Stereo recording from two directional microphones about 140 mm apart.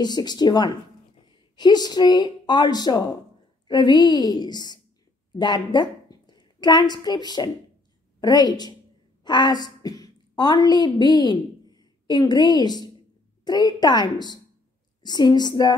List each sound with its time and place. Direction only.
0.0 s a woman's voice: 30° left (ahead or behind)